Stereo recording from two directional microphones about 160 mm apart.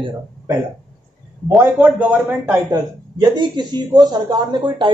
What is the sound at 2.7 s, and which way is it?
Speech, 25° right (ahead or behind).